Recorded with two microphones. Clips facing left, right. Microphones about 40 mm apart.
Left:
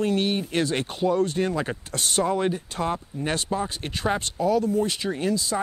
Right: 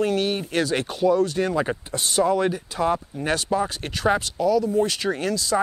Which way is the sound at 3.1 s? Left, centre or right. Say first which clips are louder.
Right 1 dB; right.